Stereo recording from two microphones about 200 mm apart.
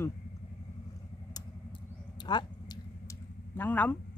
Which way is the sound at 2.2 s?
20° left (ahead or behind).